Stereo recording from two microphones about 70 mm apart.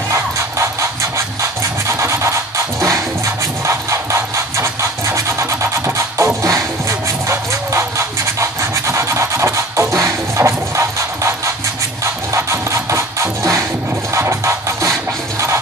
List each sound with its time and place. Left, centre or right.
0.1 s music: right